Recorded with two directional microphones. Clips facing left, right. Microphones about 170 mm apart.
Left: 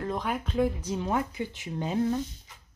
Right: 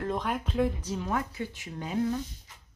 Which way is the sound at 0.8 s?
20° left (ahead or behind).